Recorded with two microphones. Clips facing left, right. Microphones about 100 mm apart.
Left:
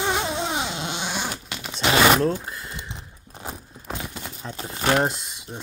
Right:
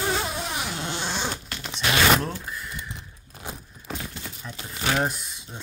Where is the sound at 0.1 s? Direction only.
25° left (ahead or behind).